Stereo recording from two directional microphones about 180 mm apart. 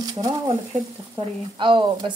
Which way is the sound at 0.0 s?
20° right (ahead or behind).